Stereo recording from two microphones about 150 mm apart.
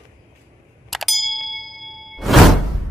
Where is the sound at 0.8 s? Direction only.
Centre (ahead or behind).